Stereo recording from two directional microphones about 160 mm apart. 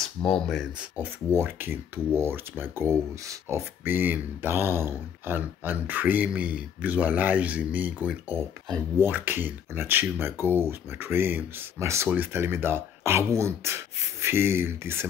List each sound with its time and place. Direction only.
0.3 s speech: centre (ahead or behind)
0.9 s speech: 15° right (ahead or behind)